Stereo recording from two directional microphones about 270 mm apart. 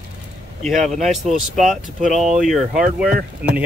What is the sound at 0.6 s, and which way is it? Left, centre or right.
Speech, centre.